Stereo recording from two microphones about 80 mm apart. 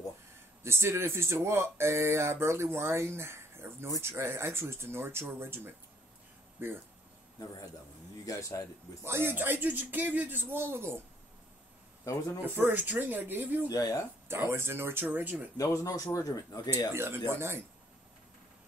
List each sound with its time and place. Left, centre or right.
0.7 s speech: right
6.6 s speech: right
8.3 s a man's voice: left
9.0 s speech: right
12.0 s a man's voice: left
12.4 s speech: right
13.7 s a man's voice: left
14.2 s speech: right
15.5 s a man's voice: left
16.9 s speech: right